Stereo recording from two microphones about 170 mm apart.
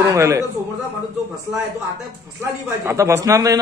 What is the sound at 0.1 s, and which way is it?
Speech, 20° right (ahead or behind).